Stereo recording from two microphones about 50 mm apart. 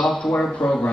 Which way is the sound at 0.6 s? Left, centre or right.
Left.